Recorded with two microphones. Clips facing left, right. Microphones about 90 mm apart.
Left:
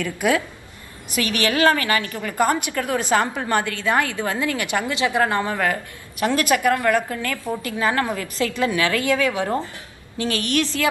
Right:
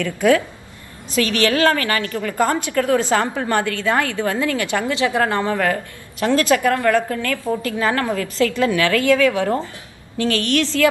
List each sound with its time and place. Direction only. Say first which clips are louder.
0.0 s a woman's voice: right 5 dB; 15° left (ahead or behind)